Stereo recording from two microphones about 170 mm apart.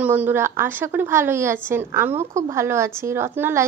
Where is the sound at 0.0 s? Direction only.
10° right (ahead or behind).